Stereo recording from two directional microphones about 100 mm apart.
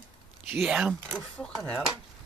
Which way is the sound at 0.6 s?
5° right (ahead or behind).